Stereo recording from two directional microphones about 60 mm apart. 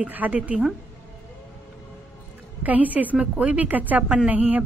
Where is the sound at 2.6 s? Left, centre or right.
Right.